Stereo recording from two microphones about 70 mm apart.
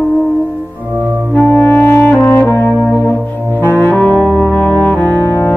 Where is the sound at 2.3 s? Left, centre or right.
Left.